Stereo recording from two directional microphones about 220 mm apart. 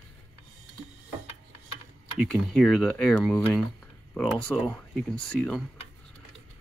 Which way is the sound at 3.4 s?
Centre (ahead or behind).